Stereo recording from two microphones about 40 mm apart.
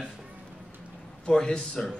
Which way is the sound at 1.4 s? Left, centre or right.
Left.